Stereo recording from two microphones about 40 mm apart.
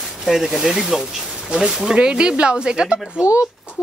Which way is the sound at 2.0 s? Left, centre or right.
Right.